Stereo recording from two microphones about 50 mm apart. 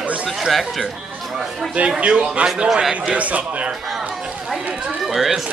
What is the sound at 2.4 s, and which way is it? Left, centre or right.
Speech, centre.